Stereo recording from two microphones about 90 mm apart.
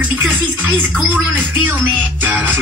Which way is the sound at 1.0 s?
20° right (ahead or behind).